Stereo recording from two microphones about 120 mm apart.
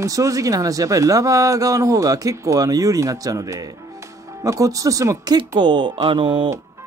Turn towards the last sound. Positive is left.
turn(degrees=-45)  # may be behind; listen again after turning